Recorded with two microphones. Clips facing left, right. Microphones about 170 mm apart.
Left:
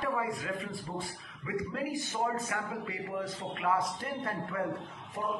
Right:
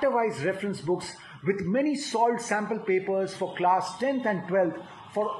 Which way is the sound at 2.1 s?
55° right (ahead or behind).